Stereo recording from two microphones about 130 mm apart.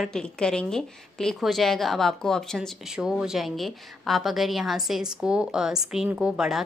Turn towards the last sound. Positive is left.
turn(degrees=-5)  # may be behind; listen again after turning